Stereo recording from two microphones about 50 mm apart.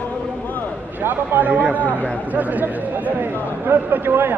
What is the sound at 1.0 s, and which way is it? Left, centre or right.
Speech, right.